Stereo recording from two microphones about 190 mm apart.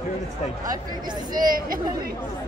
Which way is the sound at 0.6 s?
20° right (ahead or behind).